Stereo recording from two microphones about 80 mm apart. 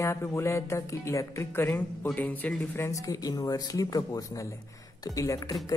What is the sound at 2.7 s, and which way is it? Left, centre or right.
Speech, left.